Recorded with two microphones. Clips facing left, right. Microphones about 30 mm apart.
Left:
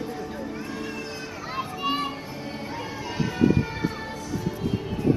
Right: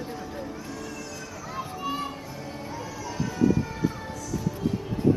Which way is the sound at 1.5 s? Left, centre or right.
Left.